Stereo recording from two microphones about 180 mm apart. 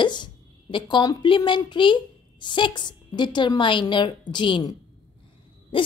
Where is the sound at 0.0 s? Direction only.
25° left (ahead or behind).